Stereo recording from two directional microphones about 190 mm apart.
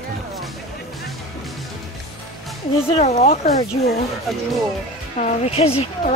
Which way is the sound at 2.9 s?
35° left (ahead or behind).